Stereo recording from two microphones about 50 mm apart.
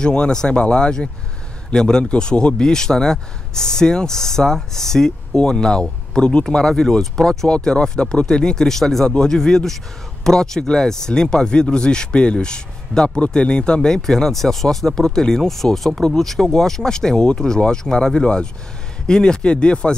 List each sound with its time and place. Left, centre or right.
0.0 s speech: centre
7.4 s speech: centre